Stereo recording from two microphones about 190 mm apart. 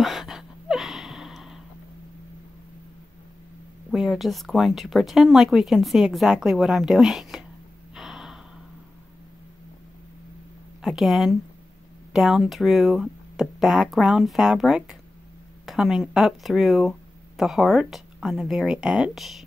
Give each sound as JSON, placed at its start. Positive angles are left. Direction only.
{"t": 0.0, "sound": "gasp", "side_deg": 0}
{"t": 3.9, "sound": "speech", "side_deg": 0}
{"t": 7.9, "sound": "gasp", "side_deg": 0}
{"t": 10.8, "sound": "speech", "side_deg": 0}